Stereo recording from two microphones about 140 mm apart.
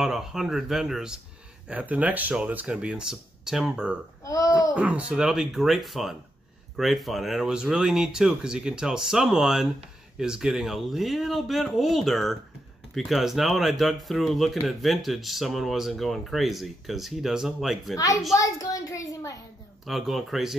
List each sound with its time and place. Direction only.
0.0 s speech: 5° right (ahead or behind)
4.2 s speech: 25° left (ahead or behind)
4.7 s speech: 10° right (ahead or behind)
17.9 s a child's voice: 25° left (ahead or behind)
19.9 s speech: centre (ahead or behind)